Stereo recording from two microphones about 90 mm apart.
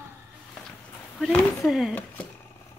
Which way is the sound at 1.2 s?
Centre (ahead or behind).